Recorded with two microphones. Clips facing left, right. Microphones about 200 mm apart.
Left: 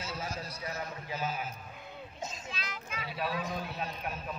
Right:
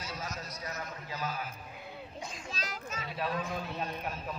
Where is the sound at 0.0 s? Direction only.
30° left (ahead or behind).